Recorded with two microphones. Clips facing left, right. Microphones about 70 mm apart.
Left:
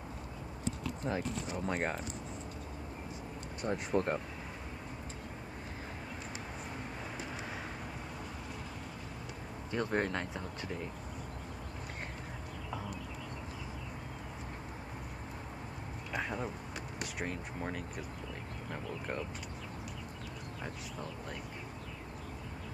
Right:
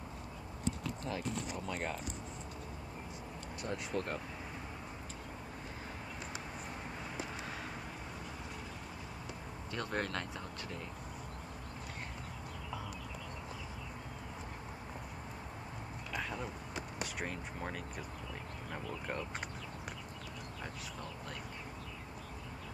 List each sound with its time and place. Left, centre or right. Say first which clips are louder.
1.1 s speech: left 4 dB; left
3.6 s speech: left 6 dB; left
9.7 s speech: left 5 dB; centre
16.1 s a sound: left 3 dB; centre
17.0 s speech: left 3 dB; centre